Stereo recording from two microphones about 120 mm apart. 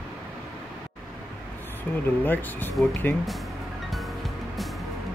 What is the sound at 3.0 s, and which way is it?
Speech, 15° left (ahead or behind).